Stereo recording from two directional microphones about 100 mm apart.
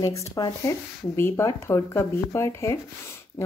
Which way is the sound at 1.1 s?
25° left (ahead or behind).